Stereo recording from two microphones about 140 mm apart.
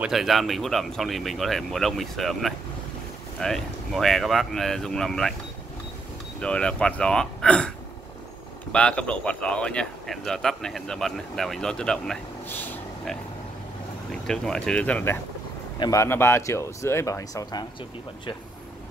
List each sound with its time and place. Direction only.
0.0 s speech: centre (ahead or behind)
6.4 s speech: 5° left (ahead or behind)
8.7 s speech: 10° left (ahead or behind)
12.4 s a sound: 15° left (ahead or behind)
14.1 s speech: 5° left (ahead or behind)
15.8 s speech: 25° left (ahead or behind)